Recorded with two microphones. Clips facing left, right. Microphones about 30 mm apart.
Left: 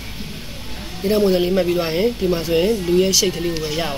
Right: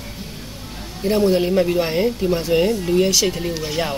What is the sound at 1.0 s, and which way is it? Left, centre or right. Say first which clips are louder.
Speech: left 1 dB; centre.